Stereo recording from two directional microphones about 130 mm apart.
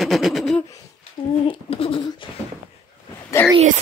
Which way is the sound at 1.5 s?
45° left (ahead or behind).